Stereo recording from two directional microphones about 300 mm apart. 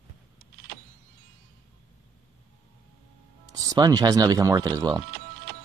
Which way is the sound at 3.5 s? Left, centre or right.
Centre.